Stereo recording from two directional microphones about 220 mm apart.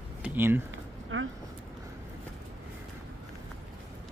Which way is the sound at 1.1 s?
65° right (ahead or behind).